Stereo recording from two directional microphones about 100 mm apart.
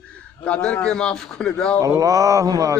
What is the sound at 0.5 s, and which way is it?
Speech, 10° left (ahead or behind).